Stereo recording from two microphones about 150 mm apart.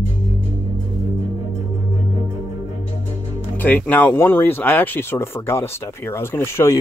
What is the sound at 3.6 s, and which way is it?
Speech, 10° left (ahead or behind).